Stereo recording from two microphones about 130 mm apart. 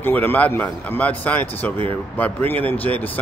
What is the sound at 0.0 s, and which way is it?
Speech, 15° left (ahead or behind).